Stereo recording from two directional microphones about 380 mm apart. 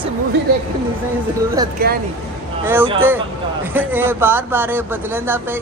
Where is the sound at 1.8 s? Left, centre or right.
Right.